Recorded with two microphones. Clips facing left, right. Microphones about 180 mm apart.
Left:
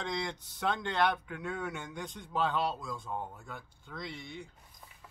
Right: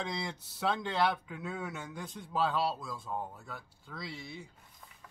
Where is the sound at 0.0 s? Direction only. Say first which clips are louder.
Left 1 dB; 5° right (ahead or behind).